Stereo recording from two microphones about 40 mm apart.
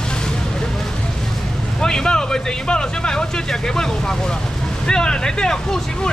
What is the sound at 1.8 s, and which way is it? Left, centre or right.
Speech, centre.